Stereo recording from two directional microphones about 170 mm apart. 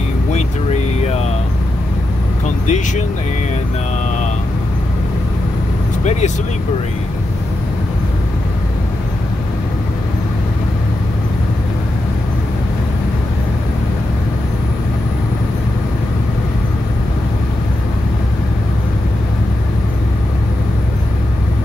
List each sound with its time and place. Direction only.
2.4 s speech: 45° left (ahead or behind)